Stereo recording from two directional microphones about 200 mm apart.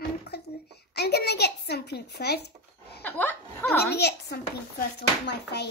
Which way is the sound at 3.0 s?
10° left (ahead or behind).